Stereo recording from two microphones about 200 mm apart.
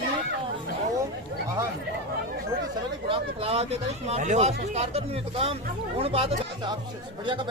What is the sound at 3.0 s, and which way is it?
Speech, 25° right (ahead or behind).